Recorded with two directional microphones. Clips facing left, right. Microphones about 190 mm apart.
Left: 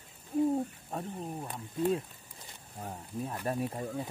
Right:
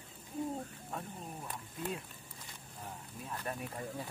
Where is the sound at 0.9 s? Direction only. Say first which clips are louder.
Left 4 dB; 30° left (ahead or behind).